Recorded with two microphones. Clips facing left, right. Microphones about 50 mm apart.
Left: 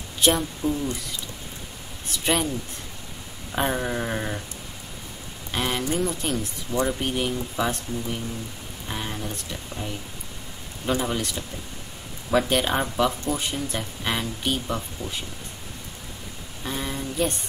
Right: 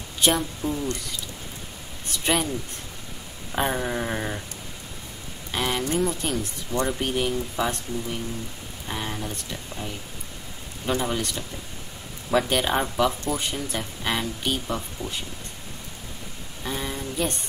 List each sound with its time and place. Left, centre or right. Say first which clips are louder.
0.6 s speech: left 4 dB; left
2.0 s speech: even; centre
3.5 s speech: even; centre
5.5 s speech: even; centre
16.6 s a sound: even; centre